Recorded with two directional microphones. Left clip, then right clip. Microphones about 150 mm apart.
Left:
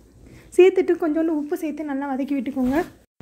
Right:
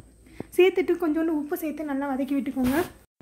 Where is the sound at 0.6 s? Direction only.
20° left (ahead or behind).